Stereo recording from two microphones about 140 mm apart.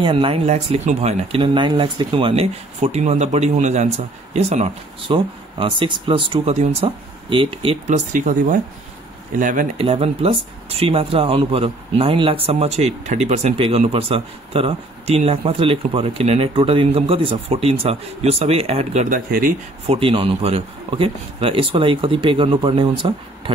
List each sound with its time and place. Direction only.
0.0 s speech: 40° right (ahead or behind)
0.5 s speech: 55° right (ahead or behind)
7.8 s speech: 65° right (ahead or behind)
9.8 s speech: 45° right (ahead or behind)
19.0 s speech: 85° right
19.9 s speech: 40° right (ahead or behind)